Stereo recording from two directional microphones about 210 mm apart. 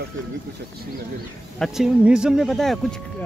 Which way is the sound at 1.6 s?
5° right (ahead or behind).